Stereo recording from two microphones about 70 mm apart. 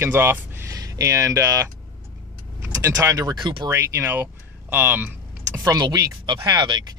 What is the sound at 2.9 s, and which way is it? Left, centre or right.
Speech, right.